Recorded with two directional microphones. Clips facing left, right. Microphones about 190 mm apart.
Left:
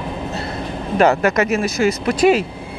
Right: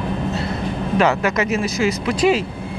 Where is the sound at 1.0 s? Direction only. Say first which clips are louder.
Left 4 dB; 50° left (ahead or behind).